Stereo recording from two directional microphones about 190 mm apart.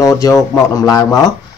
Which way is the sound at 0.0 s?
20° left (ahead or behind).